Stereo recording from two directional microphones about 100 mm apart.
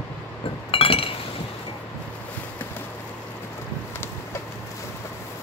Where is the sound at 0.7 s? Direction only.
70° left (ahead or behind).